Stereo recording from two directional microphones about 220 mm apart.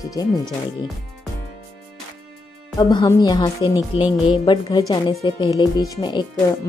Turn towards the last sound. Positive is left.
turn(degrees=20)  # may be behind; listen again after turning